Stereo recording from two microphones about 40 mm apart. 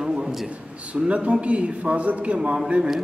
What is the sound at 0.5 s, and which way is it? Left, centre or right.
A man's voice, right.